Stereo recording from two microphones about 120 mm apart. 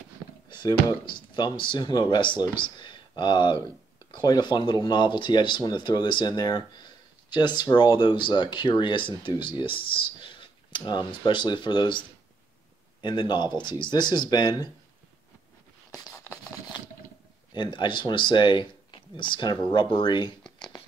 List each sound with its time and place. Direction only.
0.5 s speech: 35° left (ahead or behind)
17.6 s speech: 40° left (ahead or behind)